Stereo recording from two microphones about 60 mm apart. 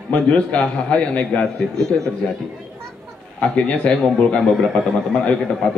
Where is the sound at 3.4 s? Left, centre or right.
Centre.